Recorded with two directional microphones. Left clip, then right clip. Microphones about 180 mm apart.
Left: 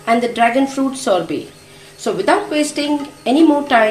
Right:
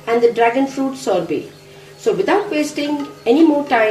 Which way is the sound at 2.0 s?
45° left (ahead or behind).